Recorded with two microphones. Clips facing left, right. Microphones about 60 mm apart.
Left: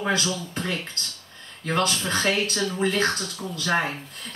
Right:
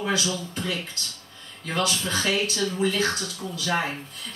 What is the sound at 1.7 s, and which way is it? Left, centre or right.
Speech, left.